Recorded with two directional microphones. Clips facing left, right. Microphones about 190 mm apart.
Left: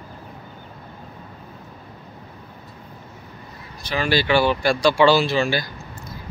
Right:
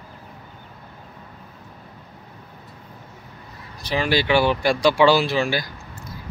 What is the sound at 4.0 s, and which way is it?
Speech, 15° right (ahead or behind).